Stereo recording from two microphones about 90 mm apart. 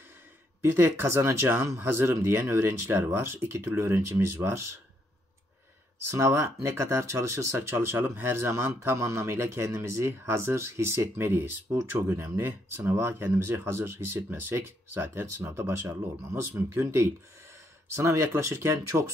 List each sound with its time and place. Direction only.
0.6 s speech: 25° right (ahead or behind)
6.0 s speech: 30° right (ahead or behind)